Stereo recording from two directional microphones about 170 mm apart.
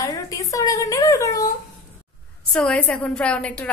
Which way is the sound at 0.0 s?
20° left (ahead or behind).